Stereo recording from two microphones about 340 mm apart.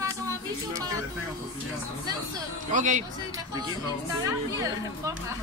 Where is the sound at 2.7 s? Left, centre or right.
Right.